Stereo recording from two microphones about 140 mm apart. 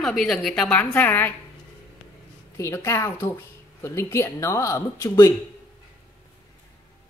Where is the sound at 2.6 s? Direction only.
20° left (ahead or behind).